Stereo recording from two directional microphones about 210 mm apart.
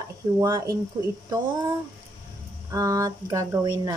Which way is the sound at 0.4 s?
20° right (ahead or behind).